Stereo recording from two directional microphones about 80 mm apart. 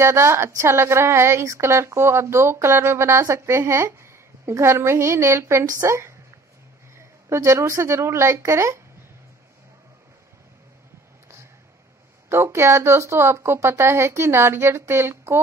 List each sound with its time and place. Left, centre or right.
0.0 s a woman's voice: right
12.3 s a woman's voice: right